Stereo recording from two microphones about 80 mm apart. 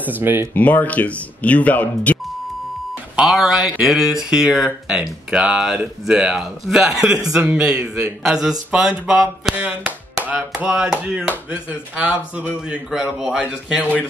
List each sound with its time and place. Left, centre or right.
0.0 s speech: right
0.6 s speech: centre
3.2 s speech: centre
9.6 s chop: centre
11.0 s speech: centre